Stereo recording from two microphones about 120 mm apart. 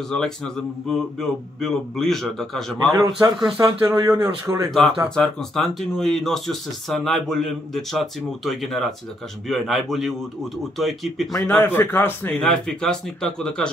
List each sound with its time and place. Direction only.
0.1 s speech: 5° left (ahead or behind)
2.9 s speech: 35° right (ahead or behind)
4.6 s speech: 5° left (ahead or behind)
11.4 s speech: 15° left (ahead or behind)
12.4 s speech: 5° left (ahead or behind)